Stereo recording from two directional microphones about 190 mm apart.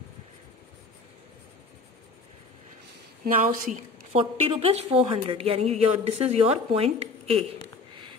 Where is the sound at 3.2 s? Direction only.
45° right (ahead or behind); by 7.4 s 30° right (ahead or behind).